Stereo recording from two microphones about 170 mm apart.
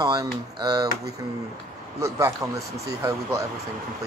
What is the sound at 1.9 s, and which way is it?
A man's voice, 20° right (ahead or behind).